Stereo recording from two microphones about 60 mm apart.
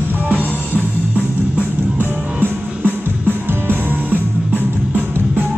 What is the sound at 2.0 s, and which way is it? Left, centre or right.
Music, right.